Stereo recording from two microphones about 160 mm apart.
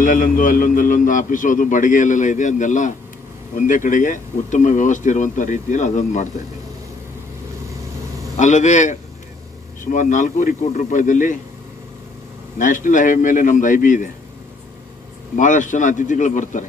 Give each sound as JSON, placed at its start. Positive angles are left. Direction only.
{"t": 0.0, "sound": "a man's voice", "side_deg": 55}
{"t": 8.4, "sound": "speech", "side_deg": 50}
{"t": 12.5, "sound": "a man's voice", "side_deg": 55}
{"t": 15.3, "sound": "speech", "side_deg": 50}